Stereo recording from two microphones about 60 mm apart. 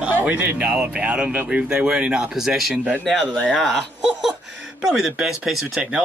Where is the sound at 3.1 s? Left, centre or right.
Centre.